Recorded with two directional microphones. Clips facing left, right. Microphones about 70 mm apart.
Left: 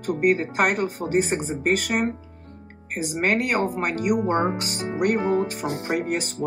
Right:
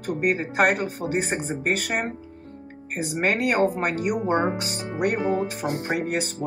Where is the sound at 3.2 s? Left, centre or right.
Centre.